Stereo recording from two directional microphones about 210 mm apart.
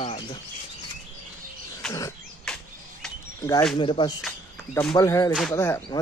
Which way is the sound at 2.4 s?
5° left (ahead or behind).